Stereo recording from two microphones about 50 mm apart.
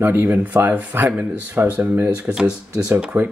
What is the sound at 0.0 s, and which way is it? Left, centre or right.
Speech, right.